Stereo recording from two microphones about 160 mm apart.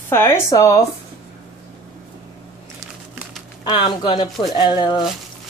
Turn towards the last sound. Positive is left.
turn(degrees=30)  # may be behind; listen again after turning